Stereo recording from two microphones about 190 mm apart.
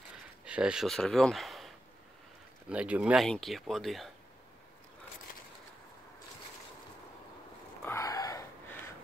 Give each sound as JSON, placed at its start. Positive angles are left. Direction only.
{"t": 0.5, "sound": "speech", "side_deg": -5}
{"t": 2.7, "sound": "speech", "side_deg": -5}
{"t": 7.8, "sound": "wheeze", "side_deg": 15}